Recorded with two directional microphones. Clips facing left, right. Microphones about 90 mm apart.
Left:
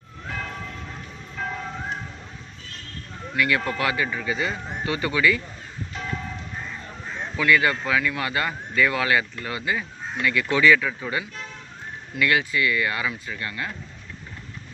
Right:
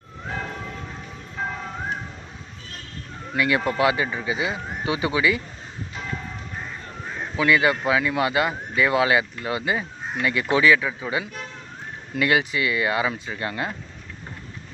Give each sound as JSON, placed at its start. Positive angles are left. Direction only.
{"t": 3.3, "sound": "speech", "side_deg": -20}
{"t": 7.3, "sound": "speech", "side_deg": -20}